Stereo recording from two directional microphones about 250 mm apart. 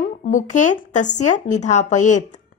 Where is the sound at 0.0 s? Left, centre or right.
Left.